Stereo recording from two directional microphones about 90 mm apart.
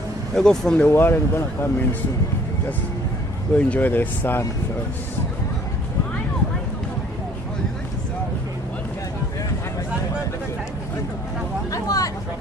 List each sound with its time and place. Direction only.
0.4 s speech: 5° left (ahead or behind)
0.7 s speech: 25° left (ahead or behind)
3.5 s speech: 15° left (ahead or behind)
11.7 s a sound: 40° left (ahead or behind)